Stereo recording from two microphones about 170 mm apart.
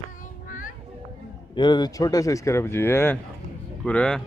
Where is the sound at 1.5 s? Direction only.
25° left (ahead or behind); by 4.2 s 5° left (ahead or behind).